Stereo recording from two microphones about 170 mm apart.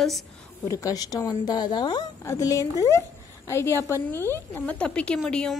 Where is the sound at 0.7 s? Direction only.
20° left (ahead or behind).